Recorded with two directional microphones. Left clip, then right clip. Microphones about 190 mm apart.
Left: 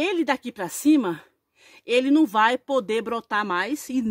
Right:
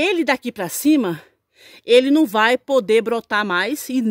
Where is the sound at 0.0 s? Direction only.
60° right (ahead or behind).